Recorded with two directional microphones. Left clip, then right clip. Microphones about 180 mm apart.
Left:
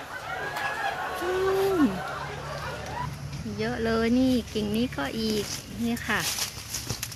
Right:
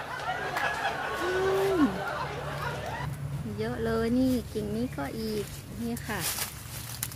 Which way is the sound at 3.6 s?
10° left (ahead or behind).